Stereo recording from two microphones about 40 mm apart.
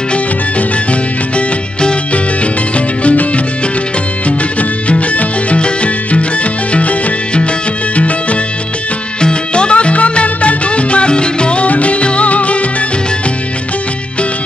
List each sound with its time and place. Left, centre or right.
1.3 s music: left
3.0 s music: left
4.6 s music: left